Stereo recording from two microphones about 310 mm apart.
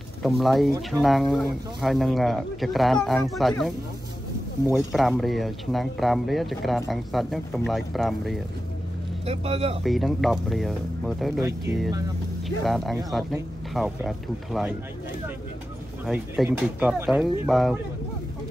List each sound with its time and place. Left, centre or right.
0.2 s speech: centre
9.2 s speech: centre
9.8 s speech: centre
12.4 s speech: centre
16.1 s speech: centre